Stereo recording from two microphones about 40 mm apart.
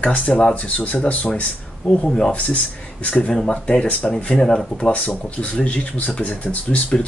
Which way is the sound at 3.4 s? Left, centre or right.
Left.